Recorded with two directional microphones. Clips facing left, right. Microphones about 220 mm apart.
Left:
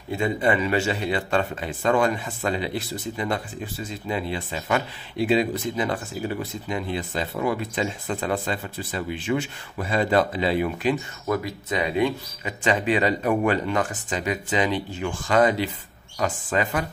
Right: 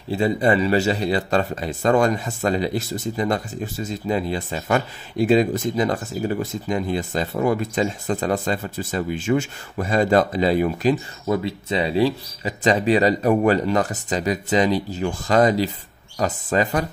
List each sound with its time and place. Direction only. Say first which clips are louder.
0.1 s speech: right 4 dB; 35° right (ahead or behind)
11.2 s speech: right 4 dB; 25° right (ahead or behind)